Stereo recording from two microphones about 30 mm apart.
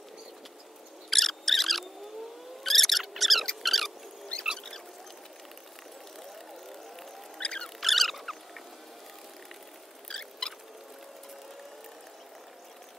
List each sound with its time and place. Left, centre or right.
1.1 s mouse: centre
2.6 s owl: centre
3.0 s mouse: centre
3.6 s rodents: centre
4.3 s rodents: left
7.3 s a sound: left
7.8 s rodents: centre
10.0 s rodents: centre